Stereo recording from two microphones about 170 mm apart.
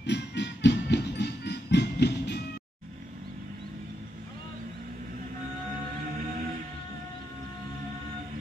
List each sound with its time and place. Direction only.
0.0 s music: 90° left